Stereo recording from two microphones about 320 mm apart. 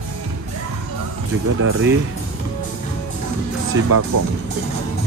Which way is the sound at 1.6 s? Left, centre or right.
Right.